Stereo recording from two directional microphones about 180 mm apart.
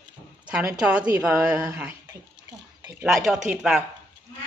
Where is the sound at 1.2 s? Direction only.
5° right (ahead or behind).